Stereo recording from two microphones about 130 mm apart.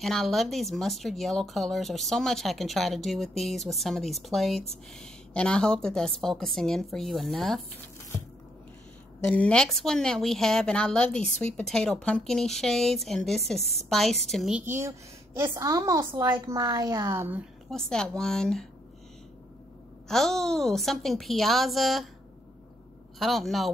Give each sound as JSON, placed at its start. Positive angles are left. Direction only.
{"t": 0.0, "sound": "speech", "side_deg": 0}
{"t": 9.3, "sound": "speech", "side_deg": 10}
{"t": 14.6, "sound": "a woman's voice", "side_deg": -20}
{"t": 17.6, "sound": "speech", "side_deg": 5}
{"t": 20.1, "sound": "speech", "side_deg": 5}
{"t": 23.1, "sound": "speech", "side_deg": 0}